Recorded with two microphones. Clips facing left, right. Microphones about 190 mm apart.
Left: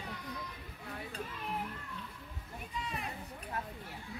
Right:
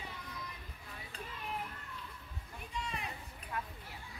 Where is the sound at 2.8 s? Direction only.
Centre (ahead or behind).